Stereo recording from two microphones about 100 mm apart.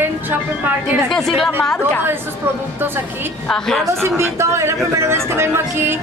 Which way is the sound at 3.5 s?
5° left (ahead or behind).